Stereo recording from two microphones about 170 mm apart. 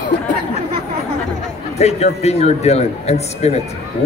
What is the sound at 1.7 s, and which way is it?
A man's voice, 40° left (ahead or behind).